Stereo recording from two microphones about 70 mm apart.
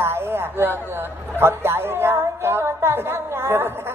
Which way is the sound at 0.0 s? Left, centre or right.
Right.